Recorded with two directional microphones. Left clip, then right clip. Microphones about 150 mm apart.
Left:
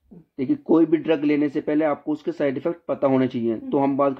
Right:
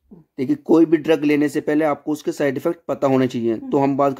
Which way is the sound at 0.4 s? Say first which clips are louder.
Right 3 dB; 40° right (ahead or behind).